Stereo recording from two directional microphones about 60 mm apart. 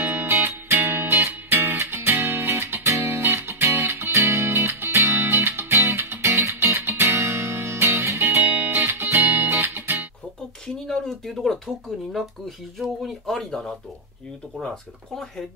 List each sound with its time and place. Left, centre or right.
0.0 s music: right
8.4 s music: right
10.9 s speech: centre